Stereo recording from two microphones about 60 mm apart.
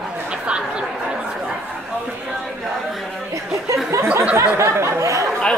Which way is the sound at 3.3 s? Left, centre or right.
Right.